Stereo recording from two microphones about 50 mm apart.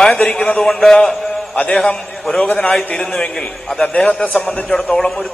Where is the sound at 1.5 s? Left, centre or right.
Centre.